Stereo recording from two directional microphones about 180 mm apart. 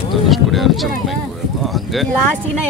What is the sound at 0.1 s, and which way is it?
Speech, centre (ahead or behind).